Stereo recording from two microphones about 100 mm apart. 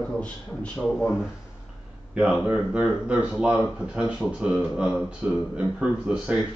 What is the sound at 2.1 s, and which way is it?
Speech, 10° right (ahead or behind).